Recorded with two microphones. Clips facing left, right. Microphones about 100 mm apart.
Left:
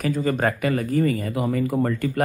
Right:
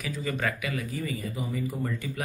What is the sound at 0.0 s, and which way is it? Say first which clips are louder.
Speech: left 9 dB; 50° left (ahead or behind).